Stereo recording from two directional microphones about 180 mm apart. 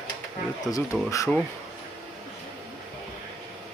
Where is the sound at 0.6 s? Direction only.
20° left (ahead or behind).